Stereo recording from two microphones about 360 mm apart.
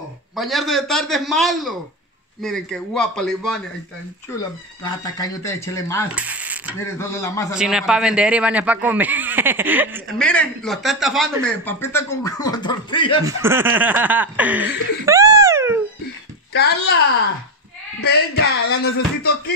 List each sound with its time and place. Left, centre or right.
0.4 s a man's voice: centre
4.8 s speech: centre
6.1 s mechanisms: centre
6.8 s a man's voice: centre
13.4 s laughter: centre
18.0 s a sound: left